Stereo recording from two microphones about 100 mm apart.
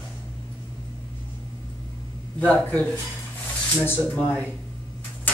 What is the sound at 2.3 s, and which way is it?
Speech, 10° left (ahead or behind).